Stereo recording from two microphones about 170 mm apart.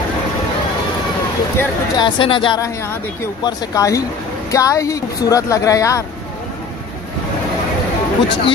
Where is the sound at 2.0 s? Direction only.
30° left (ahead or behind).